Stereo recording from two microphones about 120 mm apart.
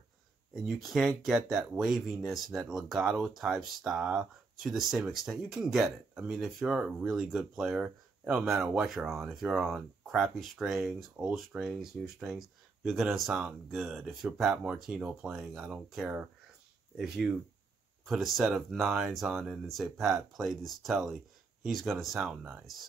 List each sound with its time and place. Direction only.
0.6 s speech: centre (ahead or behind)
22.4 s speech: 20° right (ahead or behind)